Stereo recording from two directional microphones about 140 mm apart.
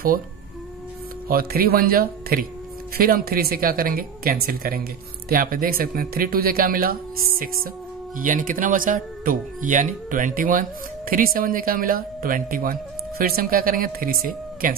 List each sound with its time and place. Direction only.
1.3 s speech: 90° right
8.2 s speech: 75° right (ahead or behind); by 14.8 s 90° right